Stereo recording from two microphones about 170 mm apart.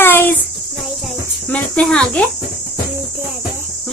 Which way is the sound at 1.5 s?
5° left (ahead or behind).